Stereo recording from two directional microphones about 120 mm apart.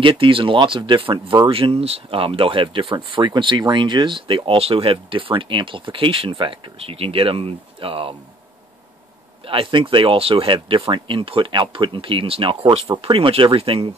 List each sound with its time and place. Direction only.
0.0 s speech: 45° right (ahead or behind)
9.4 s speech: 45° right (ahead or behind)